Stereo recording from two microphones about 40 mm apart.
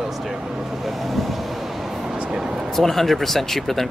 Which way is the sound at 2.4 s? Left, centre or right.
Centre.